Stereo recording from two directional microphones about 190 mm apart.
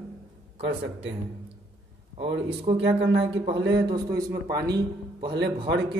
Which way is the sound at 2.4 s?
25° right (ahead or behind).